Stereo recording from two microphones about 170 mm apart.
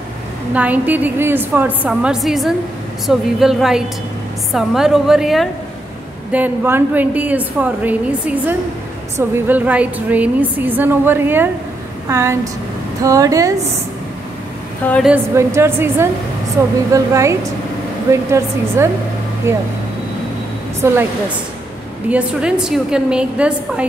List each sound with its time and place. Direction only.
0.6 s a woman's voice: 10° right (ahead or behind)
14.8 s a woman's voice: 10° left (ahead or behind)
15.3 s a woman's voice: 15° right (ahead or behind)
22.1 s a woman's voice: 5° right (ahead or behind)